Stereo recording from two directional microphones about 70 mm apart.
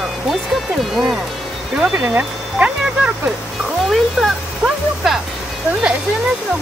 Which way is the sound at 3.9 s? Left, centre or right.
Centre.